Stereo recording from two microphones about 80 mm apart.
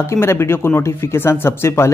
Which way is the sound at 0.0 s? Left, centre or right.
Left.